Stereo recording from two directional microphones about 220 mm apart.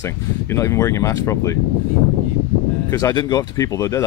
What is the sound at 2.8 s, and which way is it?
Speech, 15° left (ahead or behind).